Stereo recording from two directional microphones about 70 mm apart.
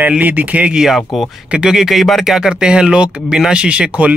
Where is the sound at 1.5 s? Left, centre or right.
Centre.